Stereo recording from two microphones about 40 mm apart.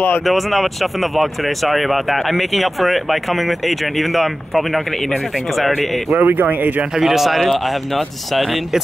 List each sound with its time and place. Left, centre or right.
0.2 s speech: centre
6.1 s speech: right
7.0 s speech: centre